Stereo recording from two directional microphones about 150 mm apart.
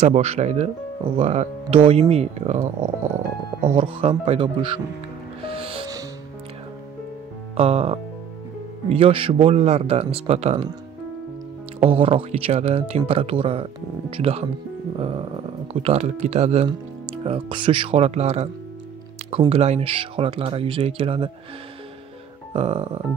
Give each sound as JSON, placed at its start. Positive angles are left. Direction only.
{"t": 0.0, "sound": "speech", "side_deg": -45}
{"t": 3.7, "sound": "speech", "side_deg": -40}
{"t": 5.4, "sound": "music", "side_deg": -40}
{"t": 7.5, "sound": "speech", "side_deg": -40}
{"t": 11.8, "sound": "speech", "side_deg": -40}
{"t": 15.0, "sound": "music", "side_deg": -40}
{"t": 15.7, "sound": "speech", "side_deg": -45}
{"t": 19.5, "sound": "speech", "side_deg": -45}
{"t": 22.5, "sound": "speech", "side_deg": -40}